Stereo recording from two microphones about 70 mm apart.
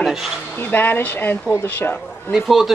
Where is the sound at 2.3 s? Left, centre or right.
Centre.